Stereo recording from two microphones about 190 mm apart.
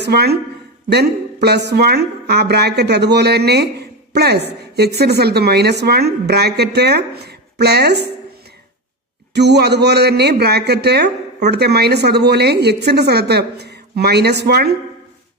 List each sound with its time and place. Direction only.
0.0 s speech: 60° right (ahead or behind)
9.3 s speech: 60° right (ahead or behind)